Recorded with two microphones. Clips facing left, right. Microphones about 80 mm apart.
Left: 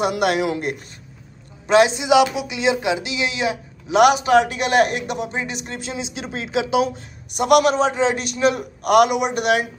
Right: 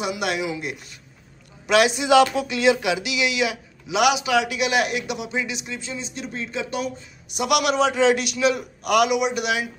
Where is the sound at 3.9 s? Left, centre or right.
Left.